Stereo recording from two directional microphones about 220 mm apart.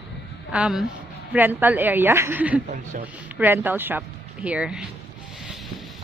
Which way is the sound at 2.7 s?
35° right (ahead or behind).